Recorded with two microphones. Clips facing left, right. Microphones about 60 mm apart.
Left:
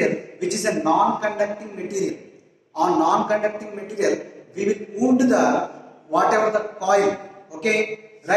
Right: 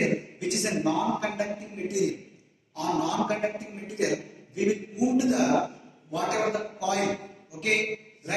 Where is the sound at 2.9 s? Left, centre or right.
Left.